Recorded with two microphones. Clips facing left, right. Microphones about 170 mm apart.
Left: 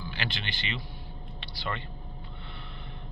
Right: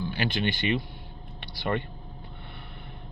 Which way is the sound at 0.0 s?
45° right (ahead or behind).